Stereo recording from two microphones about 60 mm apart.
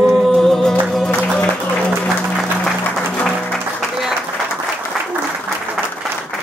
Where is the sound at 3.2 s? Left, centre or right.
Centre.